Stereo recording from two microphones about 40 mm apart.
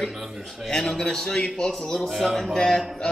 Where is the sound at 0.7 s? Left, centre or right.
Centre.